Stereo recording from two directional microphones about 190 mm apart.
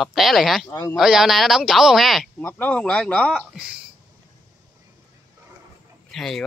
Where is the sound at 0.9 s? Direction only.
Centre (ahead or behind).